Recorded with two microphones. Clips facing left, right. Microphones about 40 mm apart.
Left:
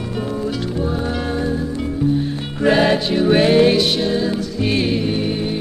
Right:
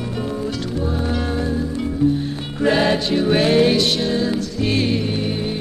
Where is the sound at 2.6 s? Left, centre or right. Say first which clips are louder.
Left 2 dB; centre.